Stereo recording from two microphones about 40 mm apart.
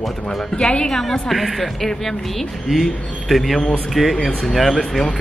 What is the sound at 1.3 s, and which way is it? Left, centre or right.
Speech, centre.